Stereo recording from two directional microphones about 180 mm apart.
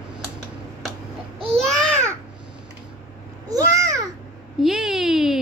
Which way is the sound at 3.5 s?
20° right (ahead or behind).